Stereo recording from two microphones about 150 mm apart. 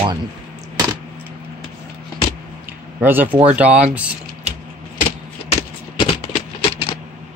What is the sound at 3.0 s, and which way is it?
Speech, 15° right (ahead or behind).